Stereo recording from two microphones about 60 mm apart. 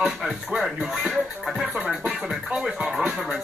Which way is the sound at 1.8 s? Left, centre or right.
Right.